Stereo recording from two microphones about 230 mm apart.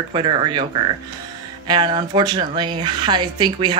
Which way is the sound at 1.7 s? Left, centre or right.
Centre.